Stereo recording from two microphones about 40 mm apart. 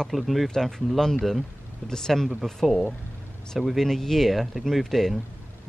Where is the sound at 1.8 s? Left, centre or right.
Centre.